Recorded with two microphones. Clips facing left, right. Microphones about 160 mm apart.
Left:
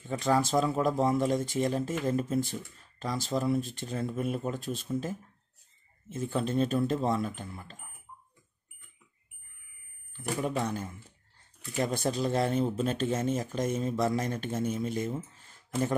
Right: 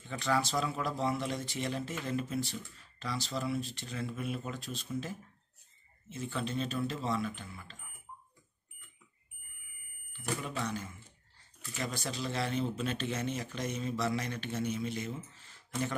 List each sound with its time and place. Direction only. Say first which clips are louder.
0.2 s speech: left 5 dB; 45° left (ahead or behind)
10.4 s speech: left 6 dB; 50° left (ahead or behind)